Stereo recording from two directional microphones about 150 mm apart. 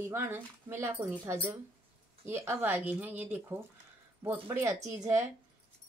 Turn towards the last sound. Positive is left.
turn(degrees=-20)  # may be behind; listen again after turning